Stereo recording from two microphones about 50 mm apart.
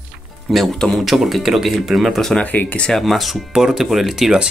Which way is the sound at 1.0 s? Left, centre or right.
Centre.